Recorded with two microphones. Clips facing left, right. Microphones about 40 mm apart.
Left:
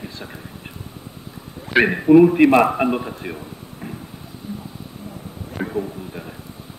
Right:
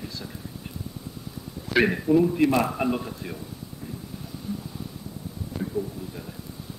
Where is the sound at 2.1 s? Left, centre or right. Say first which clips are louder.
Left 13 dB; left.